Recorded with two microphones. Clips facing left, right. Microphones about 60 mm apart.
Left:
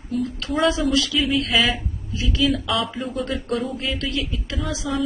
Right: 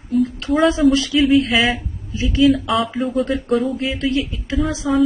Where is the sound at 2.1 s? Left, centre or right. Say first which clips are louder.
Right 6 dB; right.